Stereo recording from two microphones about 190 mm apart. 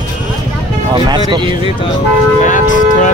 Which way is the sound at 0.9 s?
25° right (ahead or behind).